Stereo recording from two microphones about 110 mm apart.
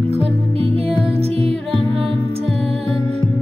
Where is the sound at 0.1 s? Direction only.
65° right (ahead or behind).